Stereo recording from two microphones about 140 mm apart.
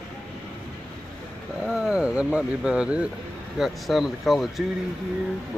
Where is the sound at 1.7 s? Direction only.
5° right (ahead or behind).